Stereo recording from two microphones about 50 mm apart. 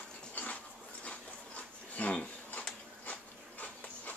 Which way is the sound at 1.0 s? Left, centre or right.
Left.